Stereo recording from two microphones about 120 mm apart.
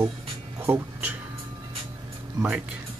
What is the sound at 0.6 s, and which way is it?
Speech, 20° right (ahead or behind).